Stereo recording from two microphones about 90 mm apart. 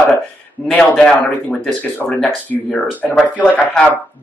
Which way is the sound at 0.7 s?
10° left (ahead or behind).